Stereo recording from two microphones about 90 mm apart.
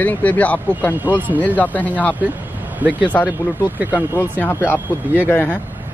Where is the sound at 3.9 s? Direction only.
35° left (ahead or behind).